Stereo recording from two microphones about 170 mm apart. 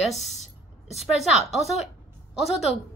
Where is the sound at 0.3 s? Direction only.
40° left (ahead or behind).